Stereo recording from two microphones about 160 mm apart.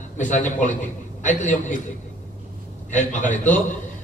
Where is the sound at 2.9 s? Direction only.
50° left (ahead or behind).